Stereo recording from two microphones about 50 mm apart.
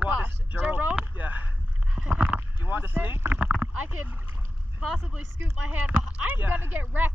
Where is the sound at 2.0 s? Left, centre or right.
Right.